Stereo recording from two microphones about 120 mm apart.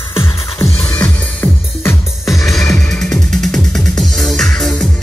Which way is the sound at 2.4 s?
5° left (ahead or behind).